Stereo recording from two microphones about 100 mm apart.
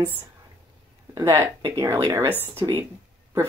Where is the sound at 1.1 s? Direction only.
30° right (ahead or behind).